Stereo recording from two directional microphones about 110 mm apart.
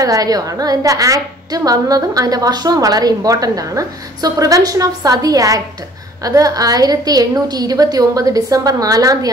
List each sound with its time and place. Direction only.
0.0 s a woman's voice: 35° right (ahead or behind)